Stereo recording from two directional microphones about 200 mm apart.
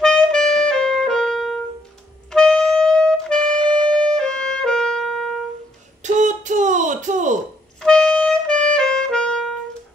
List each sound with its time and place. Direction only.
0.0 s music: 5° left (ahead or behind)
6.0 s a sound: 35° right (ahead or behind)
7.8 s music: 5° left (ahead or behind)